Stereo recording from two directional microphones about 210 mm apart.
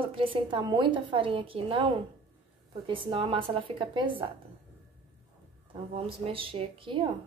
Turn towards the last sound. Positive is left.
turn(degrees=-25)  # may be behind; listen again after turning